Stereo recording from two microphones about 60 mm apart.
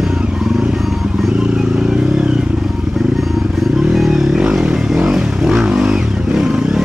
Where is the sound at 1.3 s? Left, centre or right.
Centre.